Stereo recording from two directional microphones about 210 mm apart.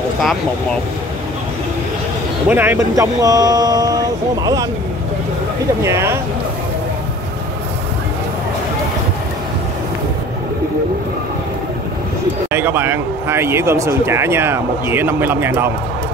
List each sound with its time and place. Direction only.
0.2 s speech: centre (ahead or behind)
2.5 s a man's voice: 10° right (ahead or behind)
5.9 s a man's voice: 10° right (ahead or behind)
12.4 s a man's voice: 10° right (ahead or behind)